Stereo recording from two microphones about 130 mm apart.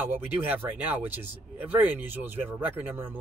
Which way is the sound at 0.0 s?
15° right (ahead or behind).